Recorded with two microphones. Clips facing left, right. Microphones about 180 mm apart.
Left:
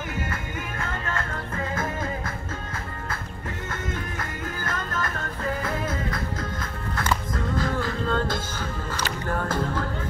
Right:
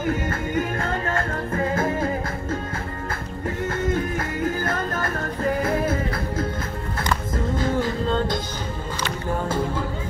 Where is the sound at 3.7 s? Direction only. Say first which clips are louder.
Right 9 dB; 30° right (ahead or behind).